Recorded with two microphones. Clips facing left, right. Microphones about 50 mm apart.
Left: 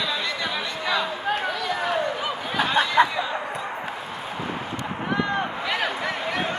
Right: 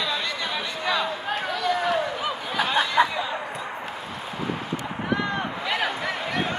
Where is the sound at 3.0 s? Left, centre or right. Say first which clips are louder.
Left 2 dB; left.